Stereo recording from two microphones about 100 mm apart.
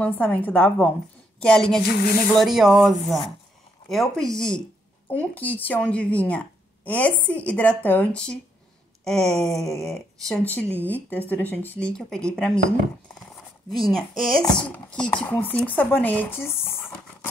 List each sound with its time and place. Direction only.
0.0 s speech: 15° left (ahead or behind)
10.4 s speech: 15° left (ahead or behind)
13.7 s speech: centre (ahead or behind); by 16.7 s 25° left (ahead or behind)